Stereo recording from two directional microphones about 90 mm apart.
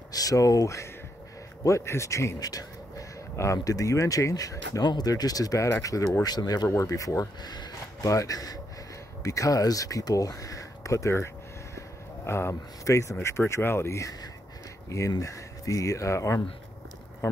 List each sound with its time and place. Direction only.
0.1 s speech: 40° left (ahead or behind)
12.3 s speech: 30° left (ahead or behind)